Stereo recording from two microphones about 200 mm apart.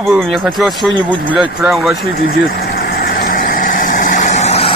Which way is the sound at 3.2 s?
45° left (ahead or behind).